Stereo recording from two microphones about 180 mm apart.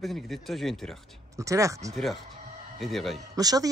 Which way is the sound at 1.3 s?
15° right (ahead or behind).